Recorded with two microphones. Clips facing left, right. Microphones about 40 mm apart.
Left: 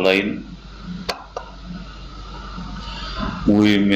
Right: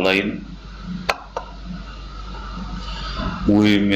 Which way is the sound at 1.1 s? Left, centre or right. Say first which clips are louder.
Right 5 dB; right.